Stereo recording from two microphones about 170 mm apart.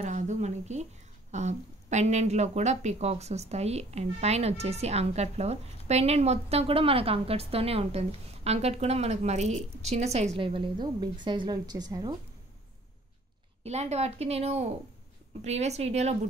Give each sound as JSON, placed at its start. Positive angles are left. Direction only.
{"t": 0.0, "sound": "a sound", "side_deg": -45}
{"t": 1.3, "sound": "a woman's voice", "side_deg": -45}
{"t": 13.7, "sound": "speech", "side_deg": -40}